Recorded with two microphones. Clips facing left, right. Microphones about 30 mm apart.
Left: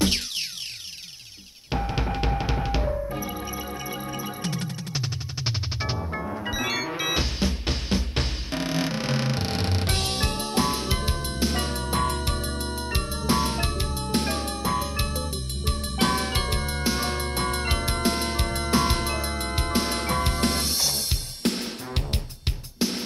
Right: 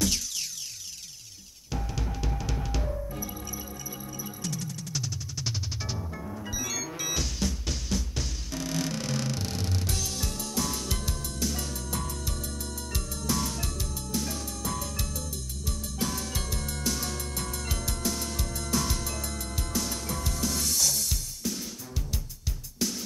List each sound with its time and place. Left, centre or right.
1.7 s music: left
21.4 s drum kit: left
22.8 s music: left